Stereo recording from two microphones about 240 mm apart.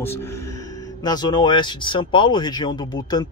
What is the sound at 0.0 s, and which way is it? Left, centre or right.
Speech, centre.